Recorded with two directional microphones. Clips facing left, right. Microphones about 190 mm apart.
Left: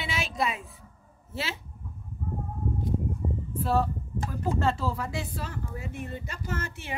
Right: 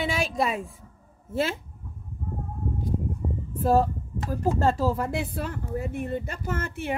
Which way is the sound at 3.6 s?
45° right (ahead or behind).